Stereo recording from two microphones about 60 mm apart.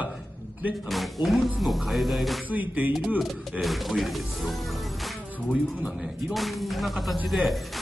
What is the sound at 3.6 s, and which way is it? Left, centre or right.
Speech, centre.